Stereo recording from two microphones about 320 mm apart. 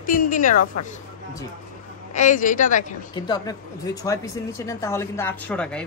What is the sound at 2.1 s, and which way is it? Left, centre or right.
A woman's voice, left.